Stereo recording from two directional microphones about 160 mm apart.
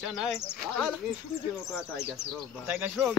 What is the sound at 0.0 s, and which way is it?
Speech, 5° right (ahead or behind).